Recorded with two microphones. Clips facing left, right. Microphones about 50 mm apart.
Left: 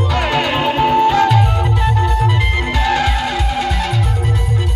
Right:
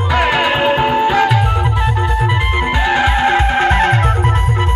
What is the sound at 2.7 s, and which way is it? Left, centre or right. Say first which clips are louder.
Music: right 2 dB; right.